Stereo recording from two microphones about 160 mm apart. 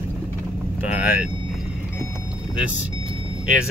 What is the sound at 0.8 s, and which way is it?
Speech, 10° right (ahead or behind).